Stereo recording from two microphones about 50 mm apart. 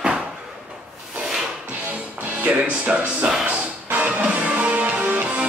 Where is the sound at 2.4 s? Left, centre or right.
Right.